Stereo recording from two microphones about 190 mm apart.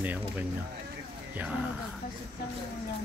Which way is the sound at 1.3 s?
10° right (ahead or behind).